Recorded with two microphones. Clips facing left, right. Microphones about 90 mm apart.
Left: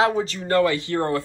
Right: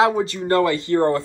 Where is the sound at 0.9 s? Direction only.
35° right (ahead or behind).